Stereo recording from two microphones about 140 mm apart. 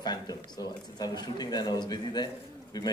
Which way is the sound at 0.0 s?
30° left (ahead or behind).